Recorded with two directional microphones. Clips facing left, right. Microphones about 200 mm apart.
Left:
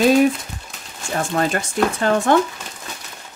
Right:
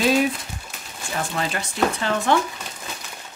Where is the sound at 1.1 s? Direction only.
45° left (ahead or behind).